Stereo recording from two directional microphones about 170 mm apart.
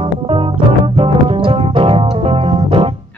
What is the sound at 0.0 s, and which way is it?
Music, 35° right (ahead or behind).